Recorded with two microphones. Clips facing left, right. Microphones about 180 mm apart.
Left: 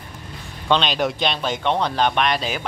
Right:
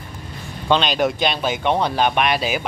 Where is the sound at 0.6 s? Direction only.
5° right (ahead or behind).